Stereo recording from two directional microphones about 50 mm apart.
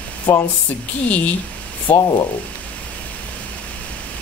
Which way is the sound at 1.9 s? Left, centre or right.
Left.